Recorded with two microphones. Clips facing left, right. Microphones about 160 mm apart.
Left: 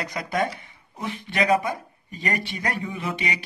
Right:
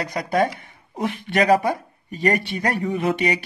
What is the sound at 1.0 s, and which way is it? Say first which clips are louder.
Speech: right 7 dB; 65° right (ahead or behind).